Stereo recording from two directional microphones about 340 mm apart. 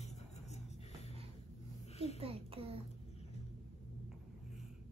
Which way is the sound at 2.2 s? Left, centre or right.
Centre.